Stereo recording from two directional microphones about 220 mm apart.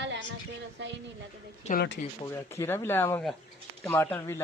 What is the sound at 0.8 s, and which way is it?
Speech, 55° right (ahead or behind).